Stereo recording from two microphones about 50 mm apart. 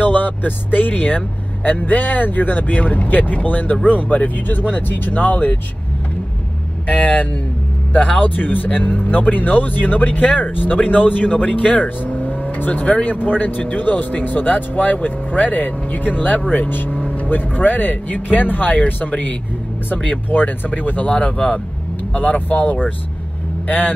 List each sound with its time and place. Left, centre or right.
0.0 s speech: left
6.9 s speech: left
20.2 s speech: left